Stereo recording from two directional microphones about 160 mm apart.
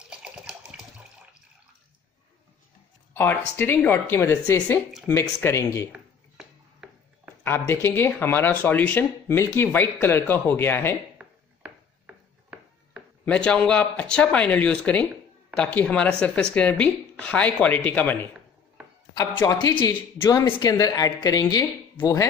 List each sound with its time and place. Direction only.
0.1 s water: 5° right (ahead or behind)
3.1 s speech: 10° left (ahead or behind)
5.9 s a sound: 5° right (ahead or behind)
7.4 s speech: 15° left (ahead or behind)
13.2 s speech: 5° left (ahead or behind)
19.3 s a woman's voice: 20° left (ahead or behind)